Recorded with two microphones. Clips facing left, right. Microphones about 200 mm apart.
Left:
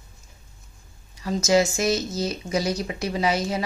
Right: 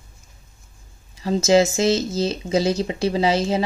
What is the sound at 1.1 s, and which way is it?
Speech, 30° right (ahead or behind).